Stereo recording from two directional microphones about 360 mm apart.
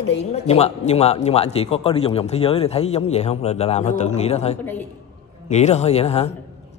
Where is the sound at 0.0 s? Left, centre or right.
Centre.